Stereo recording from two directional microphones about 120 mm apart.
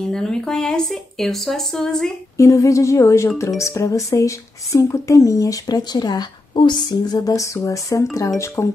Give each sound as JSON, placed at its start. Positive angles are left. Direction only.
{"t": 0.0, "sound": "speech", "side_deg": 5}
{"t": 2.3, "sound": "speech", "side_deg": 25}